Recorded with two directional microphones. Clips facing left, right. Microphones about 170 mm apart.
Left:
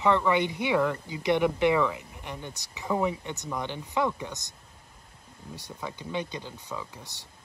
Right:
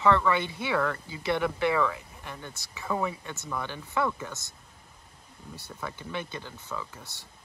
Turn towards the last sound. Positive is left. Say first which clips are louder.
# even
turn(degrees=15)  # may be behind; listen again after turning